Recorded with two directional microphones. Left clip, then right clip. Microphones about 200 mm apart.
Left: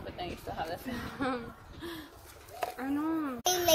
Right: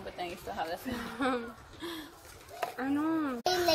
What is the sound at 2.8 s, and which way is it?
Speech, 20° right (ahead or behind).